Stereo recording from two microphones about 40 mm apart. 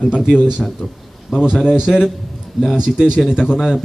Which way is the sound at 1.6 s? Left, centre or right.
Centre.